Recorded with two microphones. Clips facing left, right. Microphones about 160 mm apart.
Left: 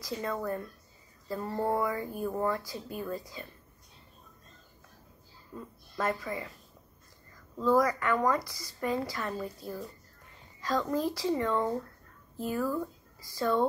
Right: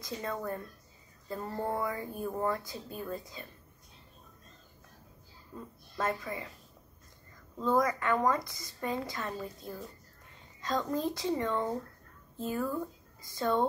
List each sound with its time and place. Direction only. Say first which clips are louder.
0.0 s a woman's voice: left 3 dB; 25° right (ahead or behind)
5.9 s a woman's voice: left 2 dB; 25° right (ahead or behind)
7.6 s a woman's voice: left 3 dB; 25° right (ahead or behind)